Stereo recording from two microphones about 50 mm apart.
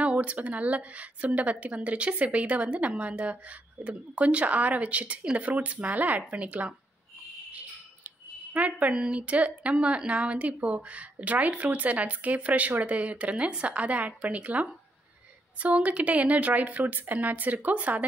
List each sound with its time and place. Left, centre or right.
0.0 s speech: right
8.5 s a sound: right
8.9 s a woman's voice: right